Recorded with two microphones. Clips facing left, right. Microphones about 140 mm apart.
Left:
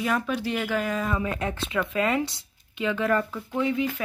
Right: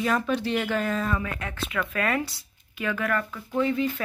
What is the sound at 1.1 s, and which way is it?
Speech, 25° left (ahead or behind).